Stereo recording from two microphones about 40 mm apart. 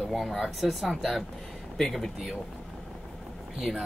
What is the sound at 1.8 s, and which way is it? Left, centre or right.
Speech, centre.